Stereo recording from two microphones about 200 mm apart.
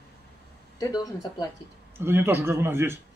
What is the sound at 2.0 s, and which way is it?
A man's voice, 10° right (ahead or behind).